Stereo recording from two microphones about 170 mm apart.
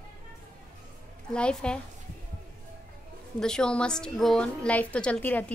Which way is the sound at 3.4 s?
5° left (ahead or behind).